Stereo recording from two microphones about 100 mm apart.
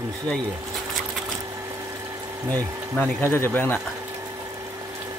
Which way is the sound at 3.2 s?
25° left (ahead or behind).